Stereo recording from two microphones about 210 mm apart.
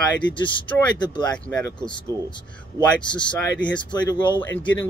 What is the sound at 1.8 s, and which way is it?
Speech, 20° left (ahead or behind).